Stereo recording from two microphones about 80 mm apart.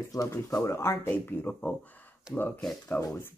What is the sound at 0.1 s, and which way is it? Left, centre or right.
Speech, left.